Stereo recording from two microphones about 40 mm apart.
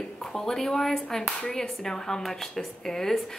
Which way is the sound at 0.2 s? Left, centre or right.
Centre.